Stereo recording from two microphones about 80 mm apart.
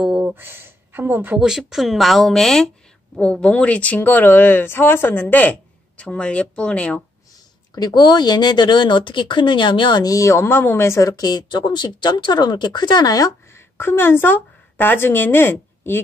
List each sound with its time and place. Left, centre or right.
0.0 s a sound: centre
0.3 s speech: right
1.4 s speech: centre
7.7 s speech: left
10.0 s speech: left
11.1 s speech: left
13.5 s a woman's voice: left